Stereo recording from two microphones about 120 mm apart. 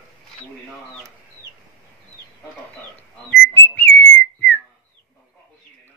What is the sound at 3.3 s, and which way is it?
Whistling, 15° left (ahead or behind).